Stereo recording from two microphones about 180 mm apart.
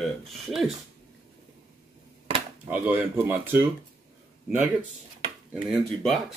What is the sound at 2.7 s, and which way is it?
Speech, 10° right (ahead or behind).